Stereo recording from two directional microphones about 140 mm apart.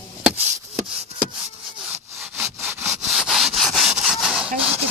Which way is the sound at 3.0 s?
Centre (ahead or behind).